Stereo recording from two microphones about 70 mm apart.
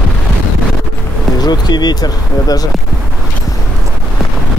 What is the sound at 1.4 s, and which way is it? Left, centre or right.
Speech, left.